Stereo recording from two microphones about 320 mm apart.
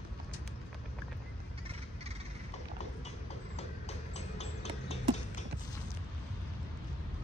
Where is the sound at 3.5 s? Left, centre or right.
Left.